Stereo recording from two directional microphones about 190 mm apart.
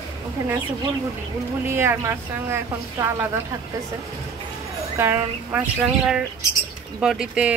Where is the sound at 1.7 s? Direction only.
15° right (ahead or behind).